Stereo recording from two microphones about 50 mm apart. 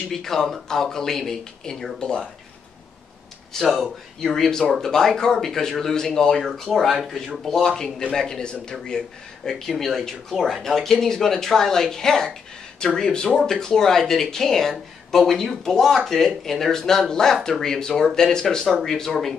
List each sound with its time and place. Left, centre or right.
0.1 s speech: centre
3.7 s speech: centre
7.4 s speech: centre